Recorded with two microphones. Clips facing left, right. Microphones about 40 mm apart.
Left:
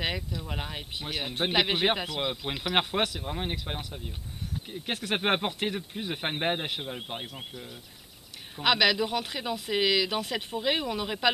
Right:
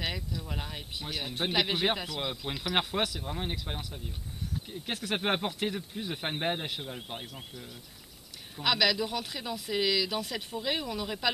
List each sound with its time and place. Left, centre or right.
0.0 s speech: left